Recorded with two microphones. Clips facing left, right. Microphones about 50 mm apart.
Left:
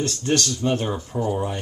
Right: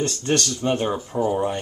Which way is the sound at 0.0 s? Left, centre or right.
Centre.